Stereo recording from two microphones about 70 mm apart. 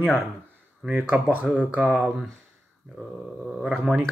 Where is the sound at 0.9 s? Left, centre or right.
Centre.